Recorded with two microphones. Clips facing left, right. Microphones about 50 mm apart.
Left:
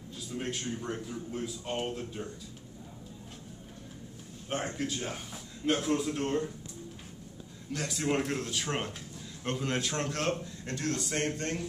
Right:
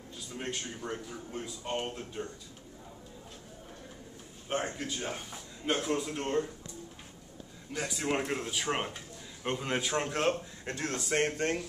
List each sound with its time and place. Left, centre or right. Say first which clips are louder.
0.4 s a man's voice: left 2 dB; centre
4.5 s a man's voice: even; centre
7.7 s a man's voice: left 1 dB; centre; by 11.6 s right